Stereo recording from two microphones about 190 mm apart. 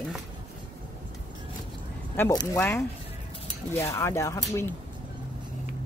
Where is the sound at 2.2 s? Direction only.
15° left (ahead or behind).